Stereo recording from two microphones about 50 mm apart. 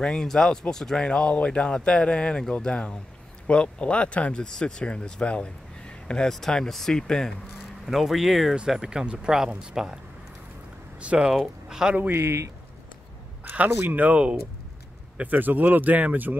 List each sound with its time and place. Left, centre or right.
0.0 s speech: centre
1.0 s speech: left
4.4 s speech: centre
6.2 s speech: centre
7.8 s speech: centre
9.8 s speech: centre
11.0 s speech: right
11.3 s speech: centre
12.1 s speech: right
13.9 s speech: right